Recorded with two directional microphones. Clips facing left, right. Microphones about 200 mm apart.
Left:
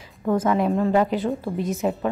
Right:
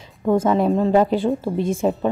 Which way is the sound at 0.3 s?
25° right (ahead or behind).